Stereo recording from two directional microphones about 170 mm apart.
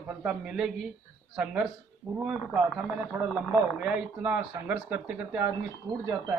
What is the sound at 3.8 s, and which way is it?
A man's voice, 5° right (ahead or behind).